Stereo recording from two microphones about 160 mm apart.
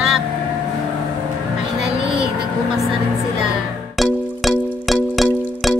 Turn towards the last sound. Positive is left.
turn(degrees=0)  # may be behind; listen again after turning